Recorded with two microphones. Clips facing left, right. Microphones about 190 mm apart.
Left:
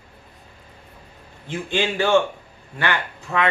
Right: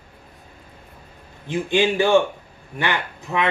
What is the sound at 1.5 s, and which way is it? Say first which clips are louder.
A man's voice: right 4 dB; 15° right (ahead or behind).